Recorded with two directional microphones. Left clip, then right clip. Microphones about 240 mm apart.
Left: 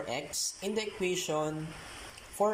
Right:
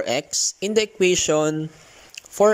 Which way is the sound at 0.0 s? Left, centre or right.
Right.